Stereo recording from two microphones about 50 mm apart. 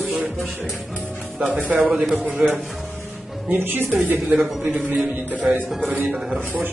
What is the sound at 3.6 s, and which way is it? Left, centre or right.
Speech, right.